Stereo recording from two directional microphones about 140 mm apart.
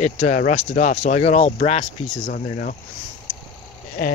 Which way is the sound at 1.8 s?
75° left (ahead or behind).